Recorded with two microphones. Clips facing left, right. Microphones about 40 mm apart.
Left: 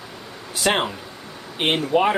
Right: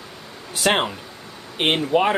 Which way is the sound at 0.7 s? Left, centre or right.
Centre.